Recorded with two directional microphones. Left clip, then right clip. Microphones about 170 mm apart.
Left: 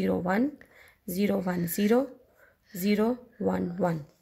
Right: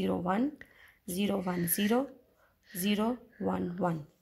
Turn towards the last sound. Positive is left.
turn(degrees=25)  # may be behind; listen again after turning